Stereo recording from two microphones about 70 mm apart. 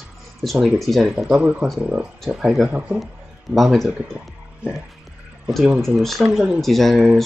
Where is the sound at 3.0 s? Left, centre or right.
Centre.